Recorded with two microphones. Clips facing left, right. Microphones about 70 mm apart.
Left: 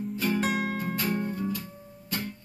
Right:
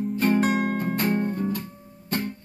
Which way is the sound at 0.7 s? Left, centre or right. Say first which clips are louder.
Right 5 dB; right.